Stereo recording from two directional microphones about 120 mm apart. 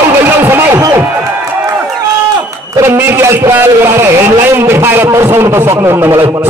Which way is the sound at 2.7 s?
20° right (ahead or behind).